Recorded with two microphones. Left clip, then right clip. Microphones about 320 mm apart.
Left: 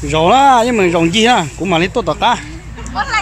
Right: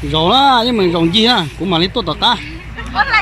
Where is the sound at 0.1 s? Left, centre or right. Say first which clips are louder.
Left 2 dB; centre.